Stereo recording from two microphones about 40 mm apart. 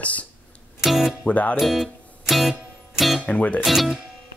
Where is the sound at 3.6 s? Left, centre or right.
Centre.